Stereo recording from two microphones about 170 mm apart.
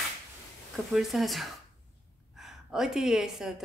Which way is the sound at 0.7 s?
Centre (ahead or behind).